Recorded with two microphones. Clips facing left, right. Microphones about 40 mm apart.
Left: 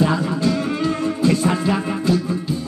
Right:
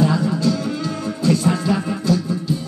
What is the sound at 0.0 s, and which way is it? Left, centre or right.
Music, left.